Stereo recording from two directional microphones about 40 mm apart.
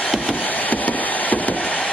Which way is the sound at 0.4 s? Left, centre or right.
Left.